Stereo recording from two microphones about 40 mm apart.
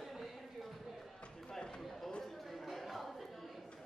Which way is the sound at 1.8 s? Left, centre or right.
Centre.